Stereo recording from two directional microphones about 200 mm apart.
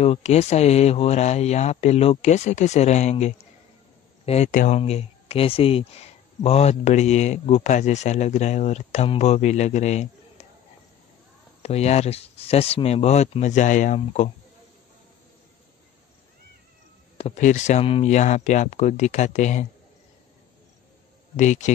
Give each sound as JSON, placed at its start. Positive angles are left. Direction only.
{"t": 0.0, "sound": "speech", "side_deg": 30}
{"t": 11.6, "sound": "speech", "side_deg": 30}
{"t": 17.2, "sound": "speech", "side_deg": 35}
{"t": 21.4, "sound": "speech", "side_deg": 35}